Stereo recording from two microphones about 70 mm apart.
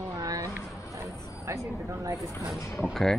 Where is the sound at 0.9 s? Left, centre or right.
Right.